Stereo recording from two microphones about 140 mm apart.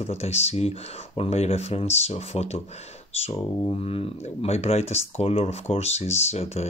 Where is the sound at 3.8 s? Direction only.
50° left (ahead or behind).